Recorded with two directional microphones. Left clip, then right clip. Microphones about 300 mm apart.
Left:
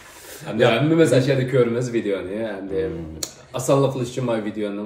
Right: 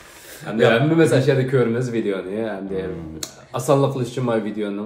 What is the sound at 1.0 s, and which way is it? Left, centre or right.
A man's voice, centre.